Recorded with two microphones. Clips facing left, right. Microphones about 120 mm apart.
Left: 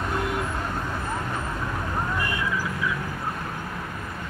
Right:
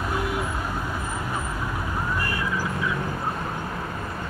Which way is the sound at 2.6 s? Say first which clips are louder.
Right 1 dB; 25° right (ahead or behind).